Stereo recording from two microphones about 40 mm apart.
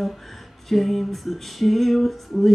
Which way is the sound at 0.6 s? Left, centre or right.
Centre.